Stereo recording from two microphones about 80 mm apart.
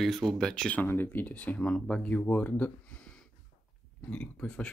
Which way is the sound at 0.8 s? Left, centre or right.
Left.